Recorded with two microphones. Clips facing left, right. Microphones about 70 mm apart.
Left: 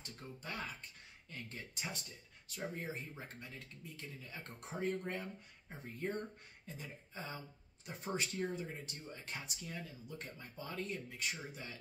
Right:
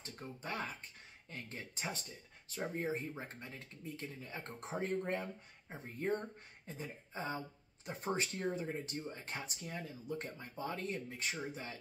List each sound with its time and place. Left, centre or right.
0.2 s speech: right